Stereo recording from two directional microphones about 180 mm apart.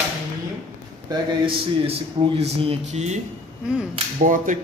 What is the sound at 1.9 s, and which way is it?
Speech, 35° right (ahead or behind).